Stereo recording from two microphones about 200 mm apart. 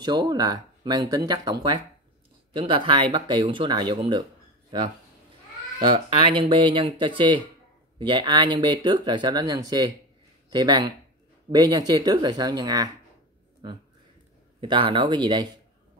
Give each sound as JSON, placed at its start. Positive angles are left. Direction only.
{"t": 0.0, "sound": "speech", "side_deg": -20}
{"t": 14.6, "sound": "speech", "side_deg": -25}